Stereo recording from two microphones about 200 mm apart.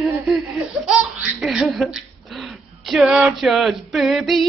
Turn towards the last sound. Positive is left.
turn(degrees=0)  # may be behind; listen again after turning